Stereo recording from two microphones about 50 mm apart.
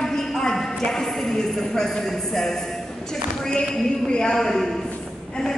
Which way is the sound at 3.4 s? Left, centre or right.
Centre.